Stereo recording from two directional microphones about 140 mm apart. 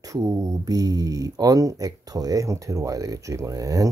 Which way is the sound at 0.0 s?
25° right (ahead or behind).